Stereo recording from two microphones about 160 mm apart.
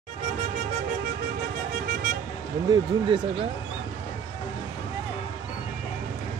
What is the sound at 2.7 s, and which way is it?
Speech, 30° right (ahead or behind).